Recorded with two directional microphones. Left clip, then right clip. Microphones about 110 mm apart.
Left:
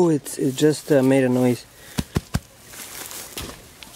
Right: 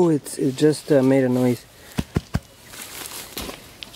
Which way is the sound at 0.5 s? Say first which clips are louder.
Even; 10° left (ahead or behind).